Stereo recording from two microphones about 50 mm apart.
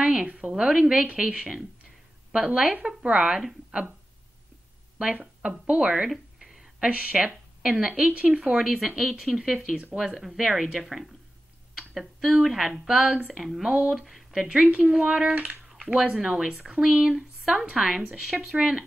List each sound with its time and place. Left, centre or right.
0.0 s a woman's voice: centre
4.9 s speech: centre
6.4 s a sound: centre
6.9 s a woman's voice: right
8.5 s speech: centre
11.7 s a sound: centre
12.4 s speech: centre
14.0 s a sound: centre
14.4 s a woman's voice: right
14.9 s speech: centre